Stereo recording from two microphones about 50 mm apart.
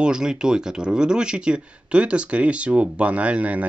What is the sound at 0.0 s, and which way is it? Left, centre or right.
Speech, centre.